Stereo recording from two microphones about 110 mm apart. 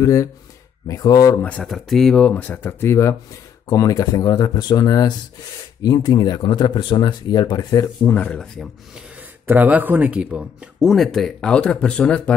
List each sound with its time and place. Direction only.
0.0 s speech: 30° left (ahead or behind)
1.6 s speech: centre (ahead or behind); by 8.1 s 35° left (ahead or behind)
8.1 s speech: 15° left (ahead or behind)
9.5 s speech: 15° right (ahead or behind); by 12.4 s 10° left (ahead or behind)